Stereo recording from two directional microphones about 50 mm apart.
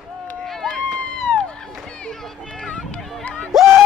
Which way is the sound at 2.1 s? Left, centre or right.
Centre.